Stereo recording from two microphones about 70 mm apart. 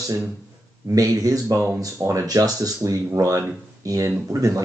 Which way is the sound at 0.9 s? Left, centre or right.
Right.